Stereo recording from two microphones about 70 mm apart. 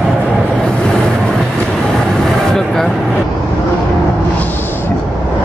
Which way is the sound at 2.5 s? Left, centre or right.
Centre.